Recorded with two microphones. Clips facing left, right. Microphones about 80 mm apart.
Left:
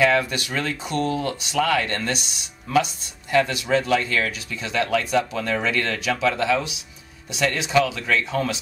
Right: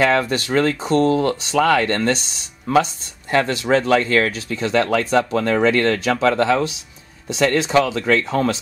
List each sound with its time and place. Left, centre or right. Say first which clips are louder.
0.0 s speech: right 2 dB; right